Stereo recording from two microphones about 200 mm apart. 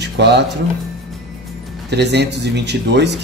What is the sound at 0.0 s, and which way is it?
Music, 60° right (ahead or behind).